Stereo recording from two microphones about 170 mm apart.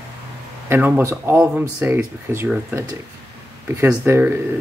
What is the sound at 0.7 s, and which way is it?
Speech, 15° right (ahead or behind).